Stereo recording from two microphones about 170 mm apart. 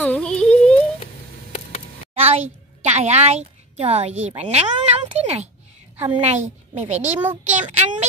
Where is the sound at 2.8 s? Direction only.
40° right (ahead or behind).